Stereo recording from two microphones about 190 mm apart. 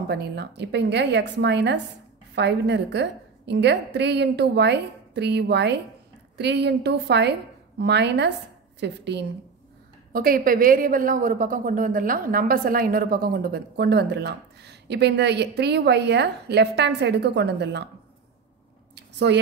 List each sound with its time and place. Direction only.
0.1 s a woman's voice: 60° right (ahead or behind)
10.1 s a woman's voice: 50° right (ahead or behind)
18.9 s a sound: 65° right (ahead or behind)